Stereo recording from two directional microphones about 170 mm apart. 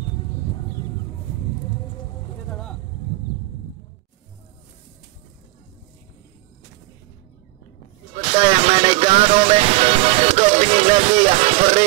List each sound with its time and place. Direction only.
2.5 s vehicle: 5° left (ahead or behind)
8.2 s music: 35° right (ahead or behind)